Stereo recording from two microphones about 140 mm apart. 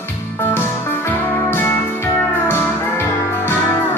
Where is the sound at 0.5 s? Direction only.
15° left (ahead or behind).